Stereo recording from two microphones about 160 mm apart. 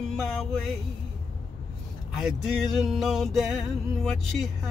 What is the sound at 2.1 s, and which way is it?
Music, 5° right (ahead or behind).